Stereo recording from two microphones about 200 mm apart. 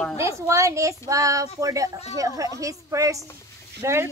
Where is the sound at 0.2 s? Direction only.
15° right (ahead or behind).